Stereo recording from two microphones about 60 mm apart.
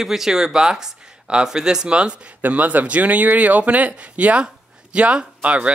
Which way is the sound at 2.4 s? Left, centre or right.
Right.